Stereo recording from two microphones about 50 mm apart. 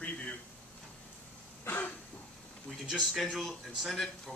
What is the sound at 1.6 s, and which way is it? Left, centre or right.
Throat clearing, left.